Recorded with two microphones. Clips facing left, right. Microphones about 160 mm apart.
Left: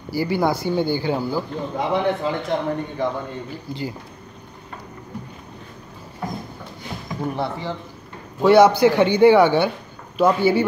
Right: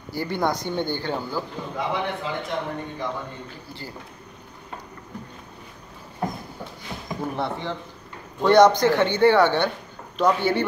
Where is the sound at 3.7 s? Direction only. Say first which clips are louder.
Left 12 dB; 15° left (ahead or behind).